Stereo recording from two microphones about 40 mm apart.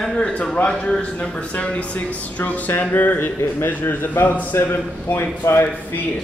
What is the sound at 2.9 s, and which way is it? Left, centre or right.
Speech, left.